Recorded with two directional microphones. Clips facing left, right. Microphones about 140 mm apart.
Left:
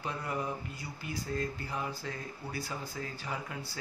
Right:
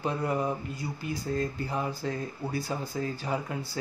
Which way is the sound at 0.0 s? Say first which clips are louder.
Right 7 dB; 30° right (ahead or behind).